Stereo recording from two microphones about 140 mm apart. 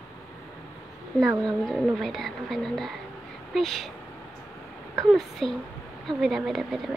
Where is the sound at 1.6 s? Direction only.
Centre (ahead or behind).